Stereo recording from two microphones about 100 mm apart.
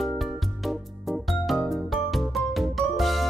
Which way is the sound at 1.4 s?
Centre (ahead or behind).